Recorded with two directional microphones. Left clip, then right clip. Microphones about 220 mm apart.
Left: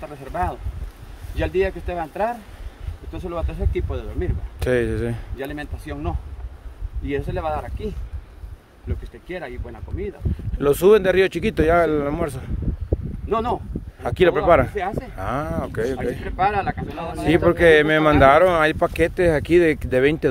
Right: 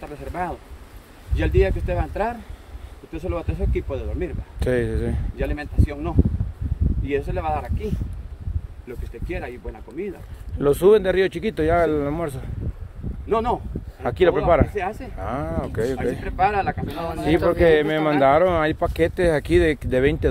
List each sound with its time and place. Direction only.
0.3 s speech: 10° left (ahead or behind)
10.0 s speech: 5° left (ahead or behind)
10.6 s speech: 20° left (ahead or behind)
13.3 s speech: 5° left (ahead or behind)
14.0 s speech: 20° left (ahead or behind)
14.8 s speech: 5° left (ahead or behind)
15.1 s speech: 20° left (ahead or behind)
16.0 s speech: 10° left (ahead or behind)
17.5 s speech: 25° left (ahead or behind)